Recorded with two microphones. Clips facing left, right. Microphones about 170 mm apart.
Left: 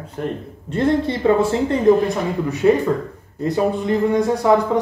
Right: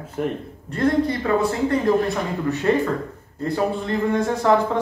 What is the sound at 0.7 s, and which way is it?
Speech, 25° left (ahead or behind).